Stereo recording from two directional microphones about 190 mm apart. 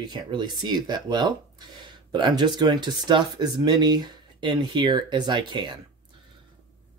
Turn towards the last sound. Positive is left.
turn(degrees=-25)  # may be behind; listen again after turning